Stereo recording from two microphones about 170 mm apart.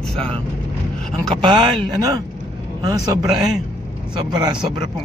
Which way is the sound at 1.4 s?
30° right (ahead or behind).